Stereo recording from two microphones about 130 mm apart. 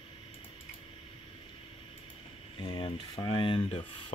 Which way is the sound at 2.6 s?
35° left (ahead or behind).